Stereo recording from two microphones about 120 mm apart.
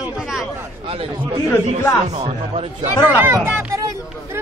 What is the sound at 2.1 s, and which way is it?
Speech, 50° right (ahead or behind).